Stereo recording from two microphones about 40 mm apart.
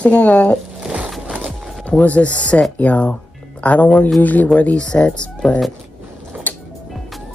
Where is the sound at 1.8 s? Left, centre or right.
Left.